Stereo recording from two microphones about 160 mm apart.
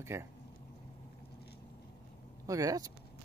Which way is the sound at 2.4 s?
20° right (ahead or behind).